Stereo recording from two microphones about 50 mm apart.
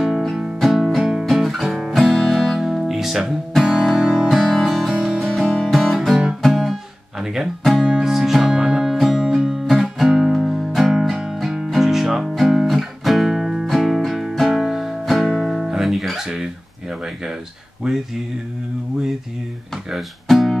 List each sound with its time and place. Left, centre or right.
0.3 s music: centre
0.6 s music: centre
2.1 s music: centre
4.1 s music: centre
5.9 s music: centre
6.5 s guitar: centre
7.9 s music: centre
14.3 s guitar: centre
17.8 s a sound: centre
19.9 s music: centre